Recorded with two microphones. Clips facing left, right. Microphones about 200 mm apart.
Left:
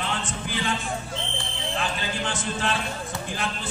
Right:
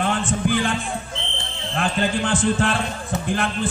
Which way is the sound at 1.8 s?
50° right (ahead or behind).